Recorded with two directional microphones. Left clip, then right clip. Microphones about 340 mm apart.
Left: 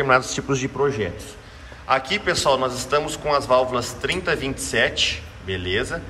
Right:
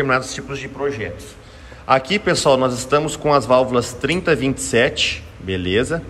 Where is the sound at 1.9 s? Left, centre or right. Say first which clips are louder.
Right 4 dB; centre.